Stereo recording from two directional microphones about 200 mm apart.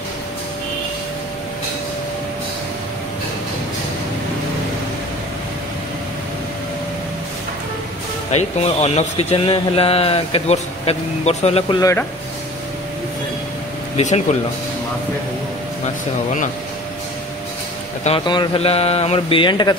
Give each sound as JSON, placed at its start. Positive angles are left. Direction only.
{"t": 8.3, "sound": "speech", "side_deg": 35}
{"t": 11.8, "sound": "speech", "side_deg": 15}
{"t": 13.9, "sound": "speech", "side_deg": 30}
{"t": 18.0, "sound": "speech", "side_deg": 25}